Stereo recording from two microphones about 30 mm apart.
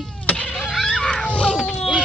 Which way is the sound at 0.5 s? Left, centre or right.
Centre.